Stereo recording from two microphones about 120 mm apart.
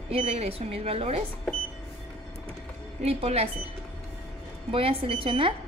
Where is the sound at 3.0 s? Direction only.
60° right (ahead or behind).